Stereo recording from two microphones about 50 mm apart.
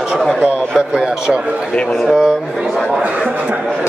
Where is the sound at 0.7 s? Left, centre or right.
Centre.